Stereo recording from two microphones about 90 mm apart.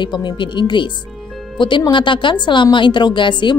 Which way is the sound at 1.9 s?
65° left (ahead or behind).